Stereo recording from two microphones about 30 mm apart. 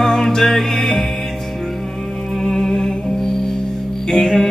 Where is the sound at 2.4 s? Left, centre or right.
Centre.